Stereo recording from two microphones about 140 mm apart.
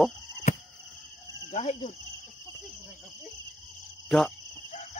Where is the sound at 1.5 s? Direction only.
50° left (ahead or behind).